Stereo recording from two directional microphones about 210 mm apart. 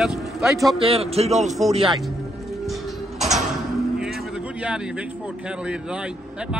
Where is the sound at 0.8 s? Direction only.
30° right (ahead or behind).